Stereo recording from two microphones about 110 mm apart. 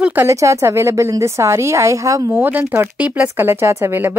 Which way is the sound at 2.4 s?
20° right (ahead or behind).